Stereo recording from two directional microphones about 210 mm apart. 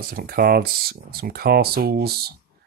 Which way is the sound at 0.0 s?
45° right (ahead or behind).